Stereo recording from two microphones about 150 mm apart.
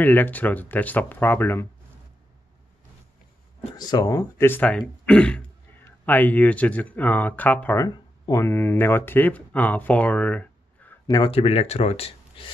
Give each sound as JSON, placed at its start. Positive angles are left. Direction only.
{"t": 0.0, "sound": "speech", "side_deg": 10}
{"t": 3.7, "sound": "speech", "side_deg": 25}
{"t": 11.1, "sound": "speech", "side_deg": 35}